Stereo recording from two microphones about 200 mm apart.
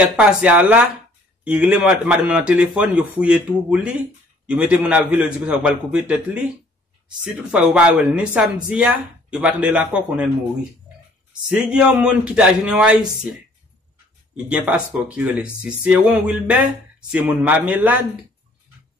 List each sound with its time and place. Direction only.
0.1 s a man's voice: 5° right (ahead or behind)
7.5 s speech: 5° right (ahead or behind)
11.4 s speech: 5° right (ahead or behind)
14.3 s a man's voice: 5° right (ahead or behind)